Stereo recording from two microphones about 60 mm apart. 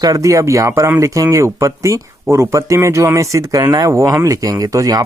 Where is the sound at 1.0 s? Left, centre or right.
Right.